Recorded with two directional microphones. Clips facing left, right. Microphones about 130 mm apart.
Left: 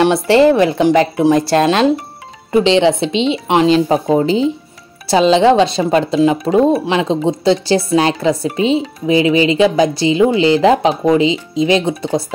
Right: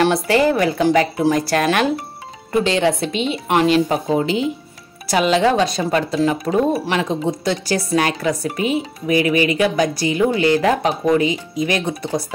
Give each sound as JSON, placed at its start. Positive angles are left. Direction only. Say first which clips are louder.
{"t": 0.0, "sound": "speech", "louder": "left 5 dB", "side_deg": 25}